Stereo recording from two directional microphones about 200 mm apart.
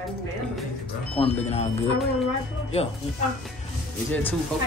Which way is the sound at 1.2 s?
35° left (ahead or behind).